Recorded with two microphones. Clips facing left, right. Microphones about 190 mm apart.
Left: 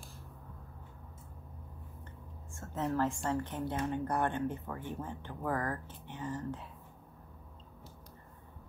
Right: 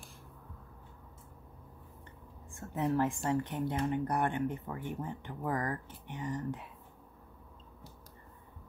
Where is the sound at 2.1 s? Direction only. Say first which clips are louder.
Left 1 dB; 15° right (ahead or behind).